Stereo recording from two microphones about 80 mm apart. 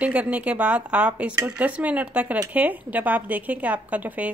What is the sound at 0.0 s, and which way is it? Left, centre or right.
A woman's voice, centre.